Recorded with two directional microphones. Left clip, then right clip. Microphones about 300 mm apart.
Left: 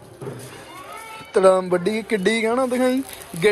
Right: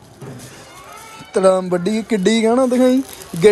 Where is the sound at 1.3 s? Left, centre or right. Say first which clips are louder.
Right 1 dB; centre.